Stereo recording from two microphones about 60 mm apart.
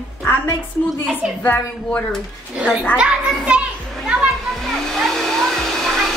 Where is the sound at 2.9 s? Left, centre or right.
Right.